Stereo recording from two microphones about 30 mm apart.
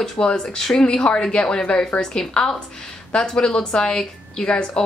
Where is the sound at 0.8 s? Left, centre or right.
Left.